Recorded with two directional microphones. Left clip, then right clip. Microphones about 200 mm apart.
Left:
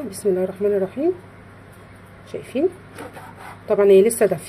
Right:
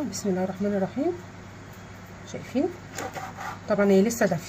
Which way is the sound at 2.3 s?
40° left (ahead or behind).